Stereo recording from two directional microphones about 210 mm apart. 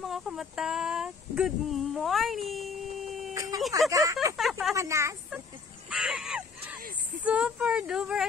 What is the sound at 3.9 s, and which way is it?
Speech, 15° right (ahead or behind).